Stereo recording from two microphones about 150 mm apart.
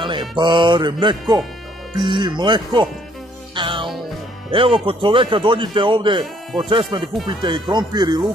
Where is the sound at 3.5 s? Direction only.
35° right (ahead or behind).